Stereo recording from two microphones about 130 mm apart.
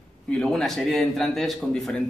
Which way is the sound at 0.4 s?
5° left (ahead or behind).